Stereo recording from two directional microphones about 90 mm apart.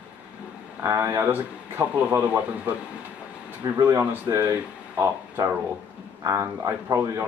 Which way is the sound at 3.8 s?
30° right (ahead or behind).